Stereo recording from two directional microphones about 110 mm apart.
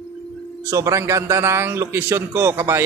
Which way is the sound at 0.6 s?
30° right (ahead or behind).